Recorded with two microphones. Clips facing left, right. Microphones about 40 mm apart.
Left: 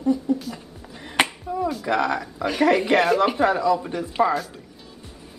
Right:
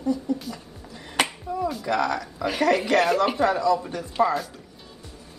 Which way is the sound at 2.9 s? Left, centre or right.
Centre.